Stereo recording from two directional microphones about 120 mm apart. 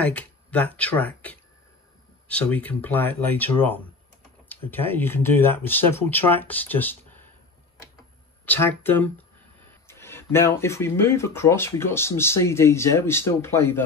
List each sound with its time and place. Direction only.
0.0 s speech: 10° left (ahead or behind)
8.5 s speech: 15° left (ahead or behind)